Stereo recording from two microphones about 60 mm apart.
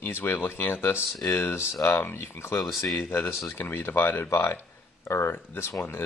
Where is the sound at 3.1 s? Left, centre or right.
Left.